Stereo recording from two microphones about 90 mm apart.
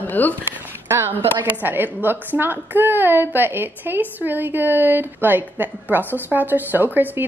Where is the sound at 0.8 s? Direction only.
30° right (ahead or behind).